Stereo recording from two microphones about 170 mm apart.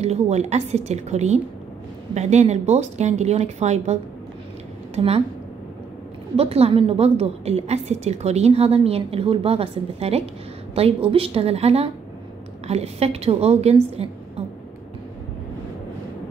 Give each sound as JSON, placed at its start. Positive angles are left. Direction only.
{"t": 0.0, "sound": "a woman's voice", "side_deg": -40}
{"t": 6.3, "sound": "a woman's voice", "side_deg": -35}